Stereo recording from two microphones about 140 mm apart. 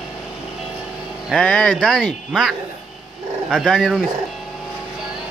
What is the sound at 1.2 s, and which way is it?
Speech, 5° left (ahead or behind).